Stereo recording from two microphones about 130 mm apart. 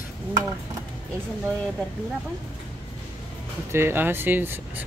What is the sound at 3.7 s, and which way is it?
Speech, 20° right (ahead or behind).